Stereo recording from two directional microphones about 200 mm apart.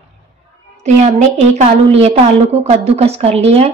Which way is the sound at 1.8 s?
30° right (ahead or behind).